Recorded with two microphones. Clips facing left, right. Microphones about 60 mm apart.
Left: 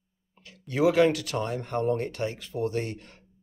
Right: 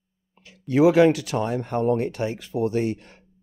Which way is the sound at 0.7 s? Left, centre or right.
Centre.